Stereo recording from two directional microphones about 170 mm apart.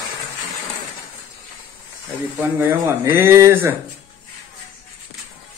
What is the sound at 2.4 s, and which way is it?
Speech, 15° right (ahead or behind).